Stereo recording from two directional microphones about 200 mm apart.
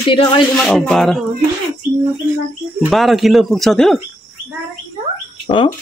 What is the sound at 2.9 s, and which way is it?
Speech, centre (ahead or behind).